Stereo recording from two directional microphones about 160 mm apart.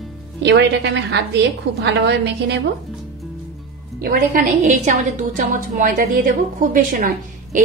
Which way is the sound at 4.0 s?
65° right (ahead or behind).